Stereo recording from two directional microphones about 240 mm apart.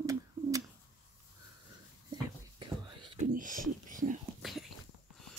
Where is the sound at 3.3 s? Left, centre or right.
Right.